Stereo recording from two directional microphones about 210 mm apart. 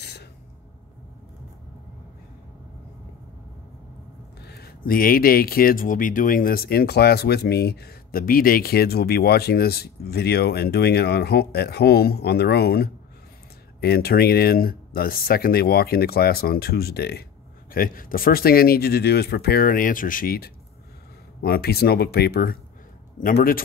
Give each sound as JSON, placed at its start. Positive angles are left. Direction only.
{"t": 0.0, "sound": "gasp", "side_deg": 50}
{"t": 4.4, "sound": "speech", "side_deg": 50}